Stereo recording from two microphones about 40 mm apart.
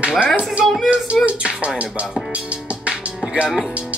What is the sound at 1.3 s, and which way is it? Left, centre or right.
Music, right.